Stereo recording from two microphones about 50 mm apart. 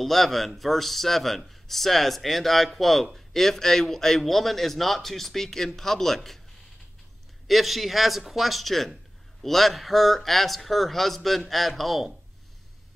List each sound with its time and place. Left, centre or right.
0.0 s speech: centre
7.4 s speech: centre